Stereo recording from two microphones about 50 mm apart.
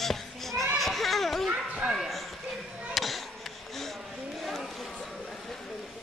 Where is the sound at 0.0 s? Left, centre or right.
Centre.